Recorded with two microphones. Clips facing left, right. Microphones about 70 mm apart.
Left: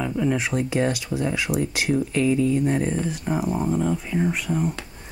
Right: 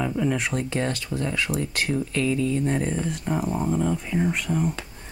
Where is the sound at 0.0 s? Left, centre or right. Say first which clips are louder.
Left 1 dB; centre.